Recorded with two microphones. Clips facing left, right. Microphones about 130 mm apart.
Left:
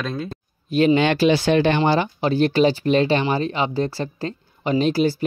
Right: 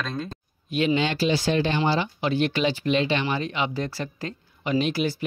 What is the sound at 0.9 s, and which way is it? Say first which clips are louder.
Speech: left 6 dB; 60° left (ahead or behind).